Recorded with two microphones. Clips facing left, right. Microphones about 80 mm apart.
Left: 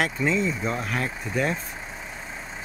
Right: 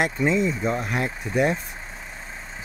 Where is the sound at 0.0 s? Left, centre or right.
Centre.